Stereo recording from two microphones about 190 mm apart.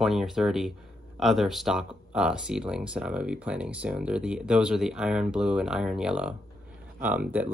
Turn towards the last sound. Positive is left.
turn(degrees=-10)  # may be behind; listen again after turning